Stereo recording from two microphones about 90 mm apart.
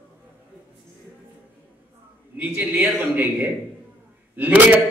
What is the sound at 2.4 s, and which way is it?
Speech, 15° right (ahead or behind).